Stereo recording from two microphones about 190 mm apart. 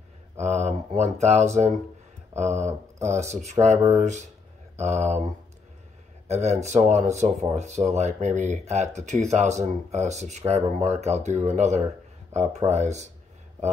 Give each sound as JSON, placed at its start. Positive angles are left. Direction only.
{"t": 0.4, "sound": "speech", "side_deg": -35}
{"t": 3.6, "sound": "speech", "side_deg": -20}
{"t": 3.9, "sound": "speech", "side_deg": -40}